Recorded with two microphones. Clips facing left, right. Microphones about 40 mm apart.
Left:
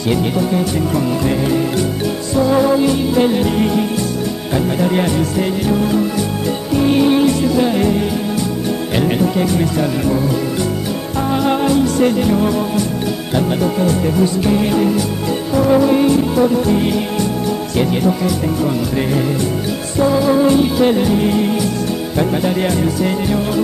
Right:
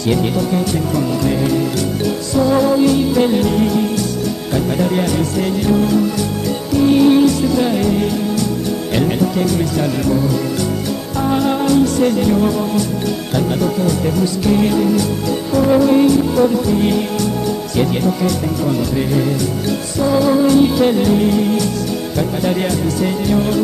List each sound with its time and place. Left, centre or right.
0.1 s music: centre
2.3 s music: centre
6.8 s music: centre
8.9 s music: centre
11.4 s music: centre
13.6 s music: left
17.7 s music: centre
20.1 s music: centre
23.0 s music: centre